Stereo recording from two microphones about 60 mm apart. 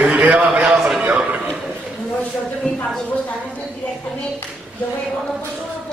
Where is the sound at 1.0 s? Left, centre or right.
Right.